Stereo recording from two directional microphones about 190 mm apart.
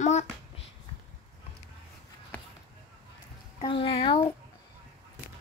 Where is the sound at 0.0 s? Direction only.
35° left (ahead or behind).